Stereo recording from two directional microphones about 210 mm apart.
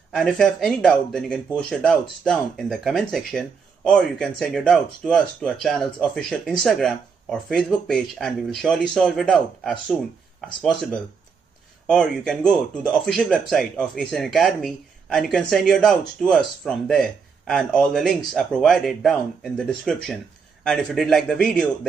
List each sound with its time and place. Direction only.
0.1 s speech: centre (ahead or behind)